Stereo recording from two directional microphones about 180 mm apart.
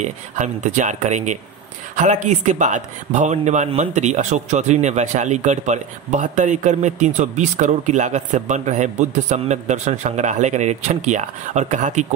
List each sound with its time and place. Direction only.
0.0 s a man's voice: 40° right (ahead or behind)